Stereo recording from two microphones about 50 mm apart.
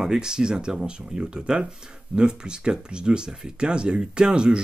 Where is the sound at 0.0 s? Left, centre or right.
Centre.